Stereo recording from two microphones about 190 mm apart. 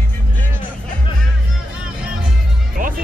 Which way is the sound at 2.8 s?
45° right (ahead or behind).